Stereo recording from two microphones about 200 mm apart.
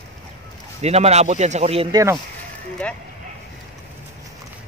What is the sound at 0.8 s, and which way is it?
Speech, 30° right (ahead or behind).